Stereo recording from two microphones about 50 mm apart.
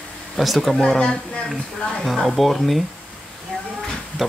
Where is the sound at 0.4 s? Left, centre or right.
Centre.